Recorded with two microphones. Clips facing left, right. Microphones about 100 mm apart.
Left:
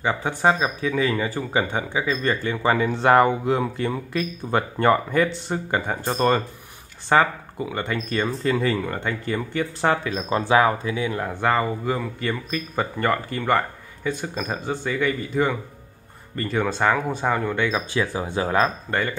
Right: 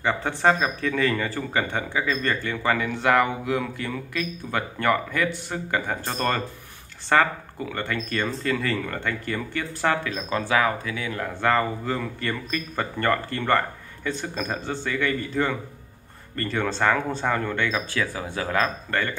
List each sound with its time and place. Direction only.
0.0 s speech: 10° left (ahead or behind)